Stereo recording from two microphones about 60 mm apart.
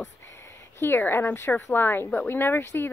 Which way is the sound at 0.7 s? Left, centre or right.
Left.